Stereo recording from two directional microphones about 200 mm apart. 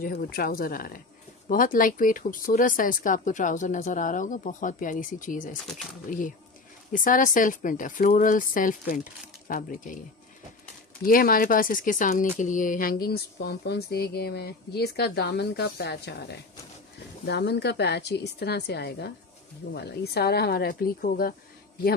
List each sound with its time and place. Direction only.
0.0 s speech: 50° left (ahead or behind)
11.1 s a woman's voice: 45° left (ahead or behind)